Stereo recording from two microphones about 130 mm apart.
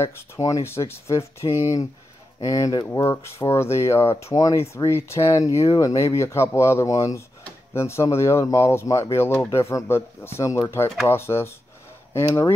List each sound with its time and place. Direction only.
0.0 s speech: 25° left (ahead or behind)